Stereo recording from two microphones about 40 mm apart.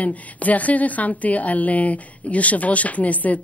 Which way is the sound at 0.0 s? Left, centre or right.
Left.